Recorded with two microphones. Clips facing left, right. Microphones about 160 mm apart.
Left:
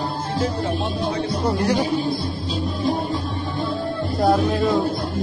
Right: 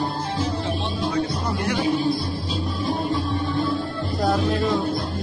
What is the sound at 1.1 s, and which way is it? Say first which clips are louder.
Music: left 2 dB; 30° left (ahead or behind).